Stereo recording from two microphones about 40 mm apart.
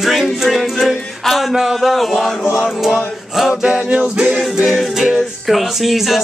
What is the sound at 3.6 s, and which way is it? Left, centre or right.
A capella, right.